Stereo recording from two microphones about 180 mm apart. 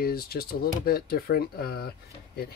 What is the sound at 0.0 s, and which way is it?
Speech, 55° left (ahead or behind).